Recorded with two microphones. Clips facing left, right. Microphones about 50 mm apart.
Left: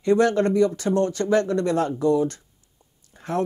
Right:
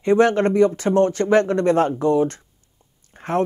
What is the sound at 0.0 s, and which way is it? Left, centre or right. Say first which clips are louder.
Speech: right 3 dB; right.